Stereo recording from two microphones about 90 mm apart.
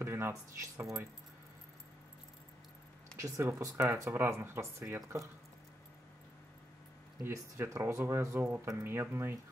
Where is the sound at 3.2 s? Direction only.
35° right (ahead or behind).